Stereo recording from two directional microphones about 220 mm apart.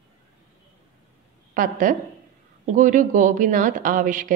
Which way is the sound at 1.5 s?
40° right (ahead or behind).